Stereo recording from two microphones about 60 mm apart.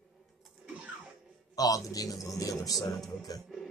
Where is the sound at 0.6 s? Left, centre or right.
Centre.